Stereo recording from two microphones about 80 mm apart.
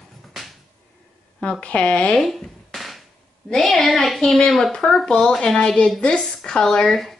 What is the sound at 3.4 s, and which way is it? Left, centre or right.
Speech, centre.